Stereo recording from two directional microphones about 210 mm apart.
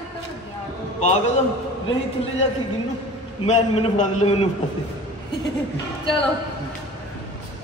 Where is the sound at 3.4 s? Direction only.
35° left (ahead or behind).